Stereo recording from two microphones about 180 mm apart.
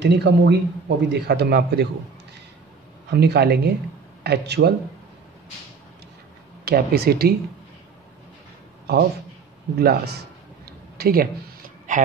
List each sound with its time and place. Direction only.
0.0 s a man's voice: 70° right (ahead or behind)
3.1 s speech: 65° right (ahead or behind)
6.6 s speech: 60° right (ahead or behind)
9.8 s speech: 60° right (ahead or behind)
10.6 s a sound: 60° right (ahead or behind)
11.9 s a sound: 45° right (ahead or behind)